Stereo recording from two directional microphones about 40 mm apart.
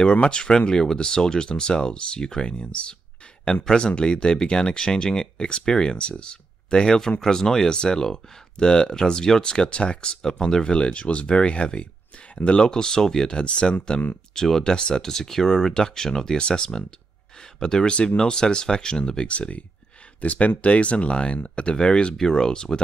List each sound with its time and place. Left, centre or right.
0.0 s speech: left
2.5 s speech: left
14.3 s speech: centre